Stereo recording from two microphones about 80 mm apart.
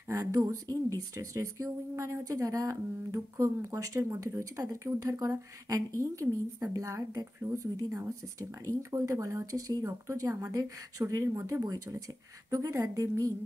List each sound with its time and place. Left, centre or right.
0.1 s speech: right